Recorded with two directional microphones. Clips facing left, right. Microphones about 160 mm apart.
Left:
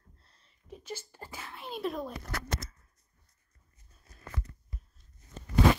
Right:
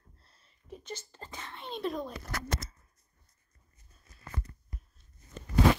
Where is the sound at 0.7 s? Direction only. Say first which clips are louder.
Left 1 dB; centre (ahead or behind).